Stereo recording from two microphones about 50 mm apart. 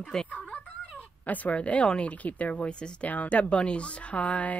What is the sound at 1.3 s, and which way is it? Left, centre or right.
Speech, left.